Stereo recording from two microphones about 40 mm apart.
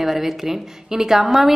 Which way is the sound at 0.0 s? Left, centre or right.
Centre.